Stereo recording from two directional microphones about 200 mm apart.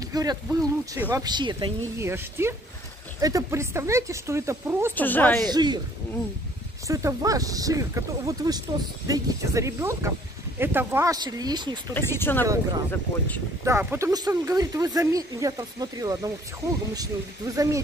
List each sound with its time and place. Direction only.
0.1 s speech: 20° right (ahead or behind)
2.0 s speech: 10° right (ahead or behind)
4.9 s speech: 10° left (ahead or behind)
5.5 s speech: 20° right (ahead or behind)
6.9 s speech: 15° right (ahead or behind)
11.9 s speech: 10° left (ahead or behind)
13.7 s speech: 15° right (ahead or behind)
17.6 s speech: 15° right (ahead or behind)